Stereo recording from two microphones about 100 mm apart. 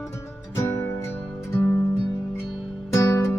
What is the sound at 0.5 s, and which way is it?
Music, 30° left (ahead or behind).